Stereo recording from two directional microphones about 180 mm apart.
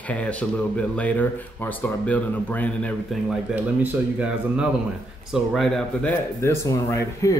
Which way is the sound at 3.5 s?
5° right (ahead or behind).